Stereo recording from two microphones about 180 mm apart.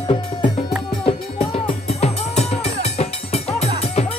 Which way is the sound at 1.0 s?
35° left (ahead or behind).